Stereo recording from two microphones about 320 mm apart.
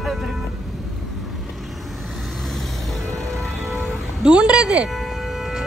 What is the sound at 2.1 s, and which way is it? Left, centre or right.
Music, centre.